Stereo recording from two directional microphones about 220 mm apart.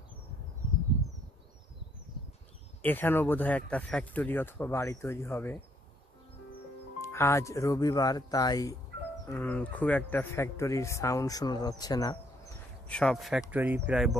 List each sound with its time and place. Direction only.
2.8 s speech: 10° left (ahead or behind)
7.0 s speech: 10° left (ahead or behind)
12.8 s speech: 5° left (ahead or behind)